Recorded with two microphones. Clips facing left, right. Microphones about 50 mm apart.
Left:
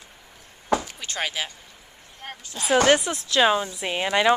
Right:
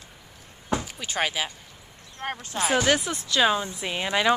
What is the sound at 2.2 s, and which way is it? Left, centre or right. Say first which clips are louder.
Speech: right 7 dB; right.